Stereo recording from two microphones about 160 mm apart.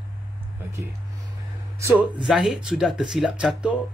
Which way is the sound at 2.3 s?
Centre (ahead or behind).